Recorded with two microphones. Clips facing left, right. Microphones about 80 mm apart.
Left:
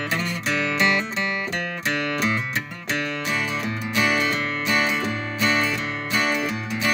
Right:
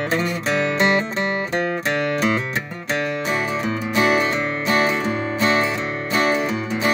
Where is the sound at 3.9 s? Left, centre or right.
Right.